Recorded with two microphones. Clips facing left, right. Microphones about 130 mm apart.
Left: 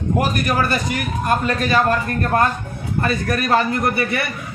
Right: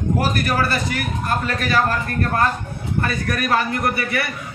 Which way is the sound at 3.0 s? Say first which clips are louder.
Left 3 dB; 25° left (ahead or behind).